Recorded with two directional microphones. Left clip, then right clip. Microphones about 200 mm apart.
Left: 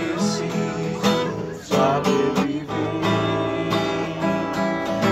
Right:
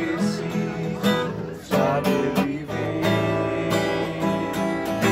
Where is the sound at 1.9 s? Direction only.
Centre (ahead or behind).